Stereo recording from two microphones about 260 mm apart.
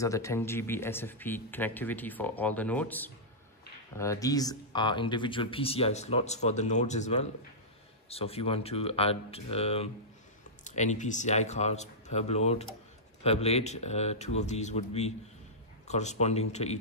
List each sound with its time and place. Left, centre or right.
0.0 s speech: centre